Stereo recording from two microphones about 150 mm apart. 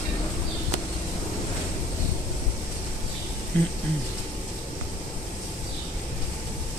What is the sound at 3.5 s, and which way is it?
Speech, 10° left (ahead or behind).